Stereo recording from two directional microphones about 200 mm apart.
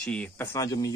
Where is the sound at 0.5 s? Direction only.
15° left (ahead or behind).